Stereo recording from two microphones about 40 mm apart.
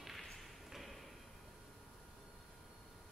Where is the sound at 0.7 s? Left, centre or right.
Centre.